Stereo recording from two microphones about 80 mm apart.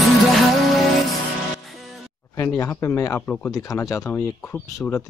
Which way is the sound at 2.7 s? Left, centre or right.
Left.